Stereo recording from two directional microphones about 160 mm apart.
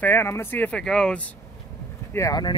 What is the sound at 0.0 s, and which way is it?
Speech, 15° left (ahead or behind).